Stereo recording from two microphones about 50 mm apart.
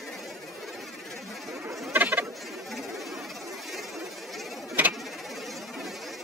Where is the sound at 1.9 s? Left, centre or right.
Right.